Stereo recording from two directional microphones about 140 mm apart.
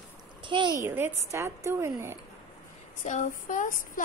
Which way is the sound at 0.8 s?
15° right (ahead or behind).